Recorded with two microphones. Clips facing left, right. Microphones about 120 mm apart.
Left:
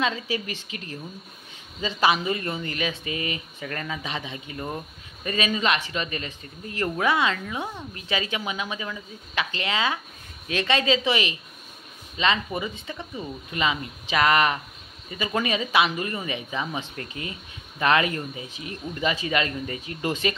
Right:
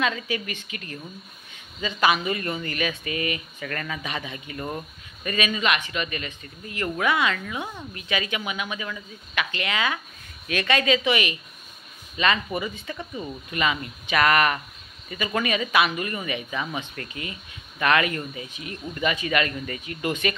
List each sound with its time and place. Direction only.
0.0 s speech: 30° left (ahead or behind)